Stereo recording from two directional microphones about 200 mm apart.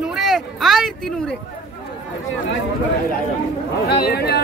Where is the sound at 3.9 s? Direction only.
50° left (ahead or behind).